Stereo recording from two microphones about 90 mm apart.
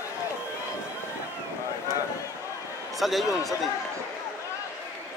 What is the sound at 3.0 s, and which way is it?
Speech, centre (ahead or behind).